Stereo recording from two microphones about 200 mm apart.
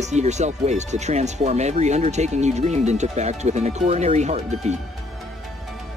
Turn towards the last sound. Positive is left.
turn(degrees=-35)  # may be behind; listen again after turning